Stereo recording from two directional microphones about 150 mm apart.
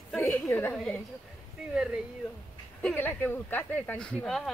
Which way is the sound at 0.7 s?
5° left (ahead or behind).